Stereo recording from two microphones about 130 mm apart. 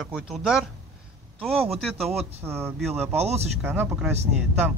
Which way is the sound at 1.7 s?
Centre (ahead or behind).